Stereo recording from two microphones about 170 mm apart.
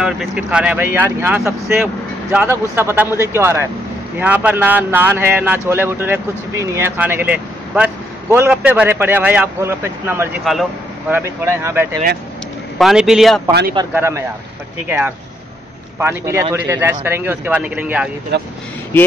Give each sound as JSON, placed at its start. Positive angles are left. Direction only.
{"t": 0.4, "sound": "a man's voice", "side_deg": -5}
{"t": 2.3, "sound": "a man's voice", "side_deg": -15}
{"t": 10.4, "sound": "a man's voice", "side_deg": 0}
{"t": 11.1, "sound": "a man's voice", "side_deg": -15}
{"t": 12.7, "sound": "a man's voice", "side_deg": 0}
{"t": 13.5, "sound": "speech", "side_deg": -65}
{"t": 13.9, "sound": "a man's voice", "side_deg": -10}
{"t": 18.3, "sound": "speech", "side_deg": -85}